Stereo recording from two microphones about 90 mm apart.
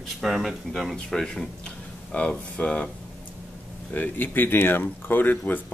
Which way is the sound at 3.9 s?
20° left (ahead or behind).